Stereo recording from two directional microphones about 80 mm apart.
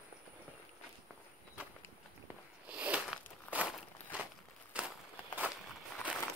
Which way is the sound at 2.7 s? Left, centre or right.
Centre.